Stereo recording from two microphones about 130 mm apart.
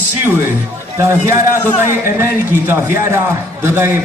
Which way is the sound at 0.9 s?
20° right (ahead or behind).